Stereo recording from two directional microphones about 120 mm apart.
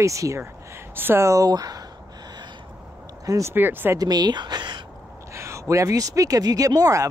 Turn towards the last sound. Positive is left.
turn(degrees=-30)  # may be behind; listen again after turning